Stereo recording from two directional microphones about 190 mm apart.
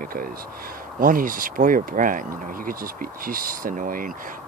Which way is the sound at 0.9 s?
45° right (ahead or behind).